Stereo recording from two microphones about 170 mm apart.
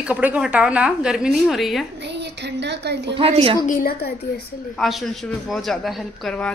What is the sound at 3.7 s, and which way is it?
Speech, 60° left (ahead or behind).